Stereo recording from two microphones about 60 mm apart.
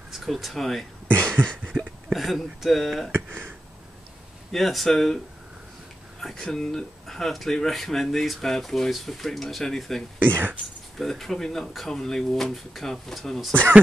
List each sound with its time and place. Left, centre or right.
0.1 s speech: centre
1.2 s a sound: centre
2.1 s speech: centre
3.1 s a sound: right
4.5 s speech: centre
6.3 s speech: centre
10.1 s speech: right
11.0 s speech: centre
13.5 s speech: right